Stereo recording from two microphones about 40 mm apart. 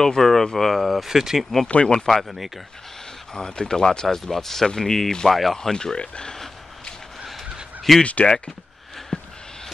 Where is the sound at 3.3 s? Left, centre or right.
Centre.